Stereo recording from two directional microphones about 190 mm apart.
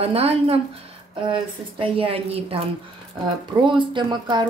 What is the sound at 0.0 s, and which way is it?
Speech, 30° right (ahead or behind).